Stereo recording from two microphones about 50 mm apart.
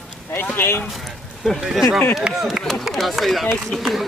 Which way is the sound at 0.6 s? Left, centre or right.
Left.